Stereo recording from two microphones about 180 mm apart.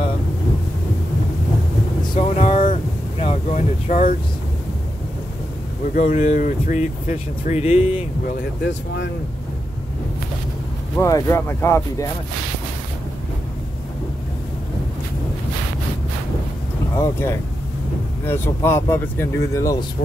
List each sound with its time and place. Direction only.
2.1 s vehicle: 35° left (ahead or behind)
3.4 s a sound: 45° left (ahead or behind)
5.9 s speech: 45° left (ahead or behind)
8.6 s speech: 80° left
11.0 s speech: 15° left (ahead or behind)
16.9 s speech: 15° left (ahead or behind)